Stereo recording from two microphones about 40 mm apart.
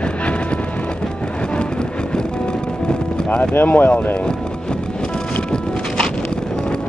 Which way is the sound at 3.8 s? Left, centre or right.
Left.